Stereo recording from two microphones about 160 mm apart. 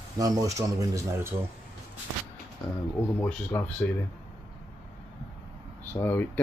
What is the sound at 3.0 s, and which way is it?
Speech, 15° left (ahead or behind).